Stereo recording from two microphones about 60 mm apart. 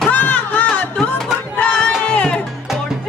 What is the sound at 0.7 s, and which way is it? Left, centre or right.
Music, centre.